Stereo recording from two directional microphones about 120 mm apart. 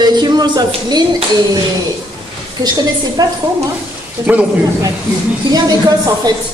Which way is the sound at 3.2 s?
30° right (ahead or behind).